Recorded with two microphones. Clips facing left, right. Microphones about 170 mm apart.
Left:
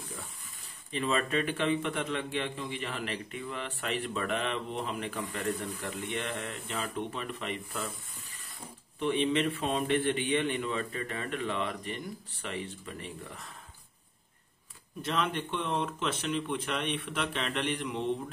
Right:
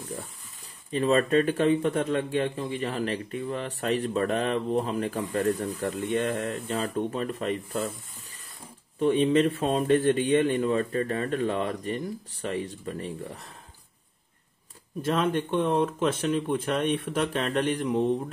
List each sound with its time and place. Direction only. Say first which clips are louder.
0.9 s a man's voice: right 8 dB; 40° right (ahead or behind)
9.0 s a man's voice: right 7 dB; 40° right (ahead or behind)
15.0 s speech: right 6 dB; 45° right (ahead or behind)